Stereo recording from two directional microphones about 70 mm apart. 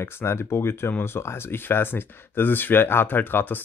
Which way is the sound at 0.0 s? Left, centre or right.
Left.